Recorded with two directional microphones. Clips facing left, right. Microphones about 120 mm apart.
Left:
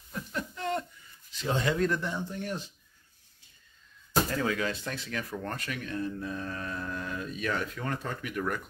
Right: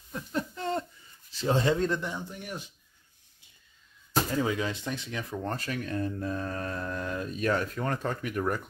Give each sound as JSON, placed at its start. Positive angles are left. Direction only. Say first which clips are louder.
{"t": 0.1, "sound": "a sound", "louder": "right 3 dB", "side_deg": -30}
{"t": 1.4, "sound": "speech", "louder": "right 2 dB", "side_deg": -30}
{"t": 4.4, "sound": "speech", "louder": "right 1 dB", "side_deg": -20}
{"t": 5.7, "sound": "speech", "louder": "even", "side_deg": -40}